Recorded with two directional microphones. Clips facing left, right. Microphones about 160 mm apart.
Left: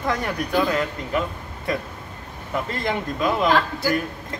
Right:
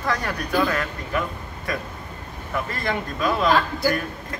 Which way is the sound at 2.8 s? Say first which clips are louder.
Left 1 dB; 20° left (ahead or behind).